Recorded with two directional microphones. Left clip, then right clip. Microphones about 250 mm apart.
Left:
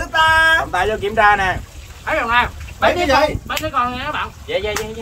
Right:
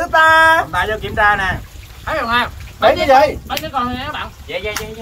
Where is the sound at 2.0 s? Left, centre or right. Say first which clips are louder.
Left 1 dB; centre.